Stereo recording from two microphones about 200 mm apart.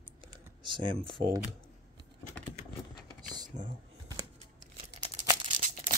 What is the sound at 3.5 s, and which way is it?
Speech, 35° right (ahead or behind).